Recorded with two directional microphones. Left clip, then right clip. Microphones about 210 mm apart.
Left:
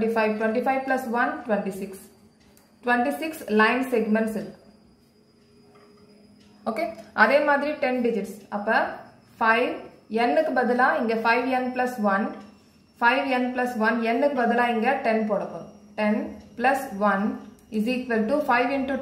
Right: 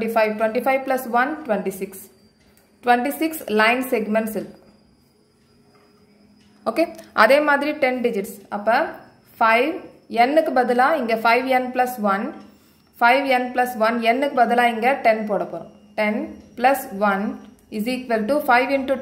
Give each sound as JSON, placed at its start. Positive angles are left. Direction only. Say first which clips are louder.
{"t": 0.0, "sound": "a woman's voice", "louder": "right 4 dB", "side_deg": -50}
{"t": 6.6, "sound": "a woman's voice", "louder": "right 6 dB", "side_deg": -40}
{"t": 16.5, "sound": "a woman's voice", "louder": "right 4 dB", "side_deg": -50}